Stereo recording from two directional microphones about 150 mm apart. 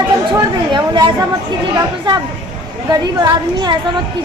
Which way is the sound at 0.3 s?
30° right (ahead or behind).